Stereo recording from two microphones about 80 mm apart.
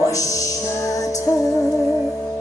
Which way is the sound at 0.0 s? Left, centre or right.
Left.